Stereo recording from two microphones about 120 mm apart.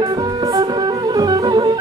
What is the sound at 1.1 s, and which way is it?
Music, 35° right (ahead or behind).